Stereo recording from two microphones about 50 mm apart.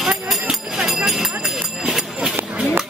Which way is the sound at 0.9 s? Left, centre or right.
Centre.